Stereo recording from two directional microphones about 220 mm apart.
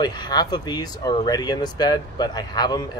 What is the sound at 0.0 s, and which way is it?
Speech, 20° left (ahead or behind).